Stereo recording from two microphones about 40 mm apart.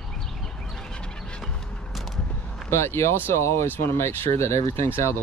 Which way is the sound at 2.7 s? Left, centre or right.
Left.